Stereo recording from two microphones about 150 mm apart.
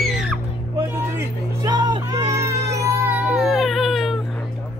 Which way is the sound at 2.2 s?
50° right (ahead or behind).